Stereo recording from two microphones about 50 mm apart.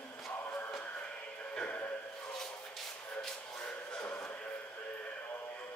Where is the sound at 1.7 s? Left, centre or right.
Left.